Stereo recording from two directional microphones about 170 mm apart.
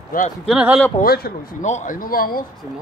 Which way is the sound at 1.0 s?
60° left (ahead or behind).